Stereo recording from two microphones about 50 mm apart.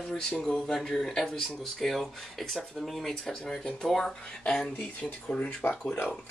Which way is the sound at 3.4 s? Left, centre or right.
Centre.